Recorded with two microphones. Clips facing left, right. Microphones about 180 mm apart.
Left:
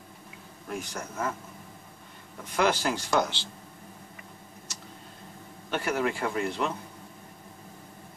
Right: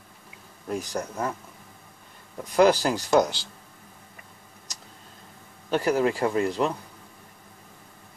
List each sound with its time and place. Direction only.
0.7 s speech: 35° right (ahead or behind)
2.4 s speech: 35° right (ahead or behind)
5.7 s speech: 35° right (ahead or behind)